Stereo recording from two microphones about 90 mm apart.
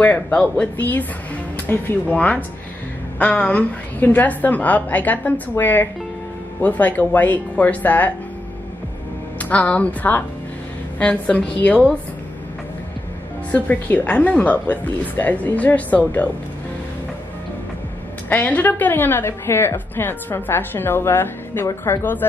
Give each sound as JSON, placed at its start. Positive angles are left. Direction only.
{"t": 0.0, "sound": "a woman's voice", "side_deg": 15}
{"t": 9.4, "sound": "a woman's voice", "side_deg": 15}
{"t": 13.5, "sound": "a woman's voice", "side_deg": 20}
{"t": 18.3, "sound": "a woman's voice", "side_deg": 20}